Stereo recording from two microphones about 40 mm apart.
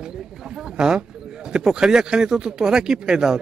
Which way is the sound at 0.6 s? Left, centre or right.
Centre.